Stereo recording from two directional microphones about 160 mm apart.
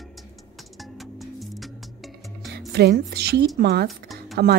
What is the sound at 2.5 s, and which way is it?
A woman's voice, 90° right.